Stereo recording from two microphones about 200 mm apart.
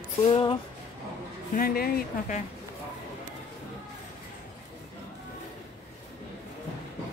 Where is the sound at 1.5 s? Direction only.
45° left (ahead or behind).